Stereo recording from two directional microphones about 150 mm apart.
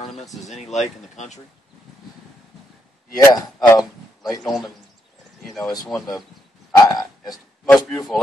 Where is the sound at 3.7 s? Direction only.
25° left (ahead or behind).